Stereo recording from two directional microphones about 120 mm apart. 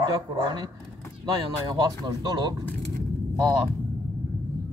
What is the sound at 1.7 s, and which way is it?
Speech, 35° right (ahead or behind).